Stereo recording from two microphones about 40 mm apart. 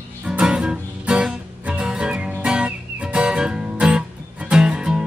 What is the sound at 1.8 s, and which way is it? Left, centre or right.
Music, centre.